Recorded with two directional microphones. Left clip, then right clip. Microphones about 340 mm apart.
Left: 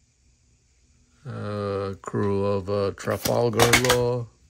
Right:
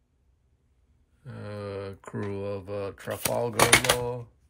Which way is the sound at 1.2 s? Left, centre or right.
Centre.